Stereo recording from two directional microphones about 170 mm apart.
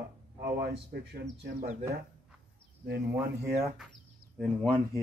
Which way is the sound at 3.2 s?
5° right (ahead or behind).